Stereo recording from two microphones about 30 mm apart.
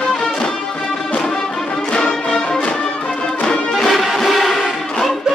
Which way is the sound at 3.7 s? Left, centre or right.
Centre.